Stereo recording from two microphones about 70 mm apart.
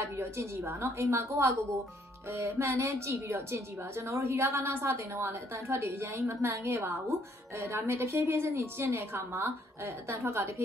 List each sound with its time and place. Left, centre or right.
0.0 s a woman's voice: right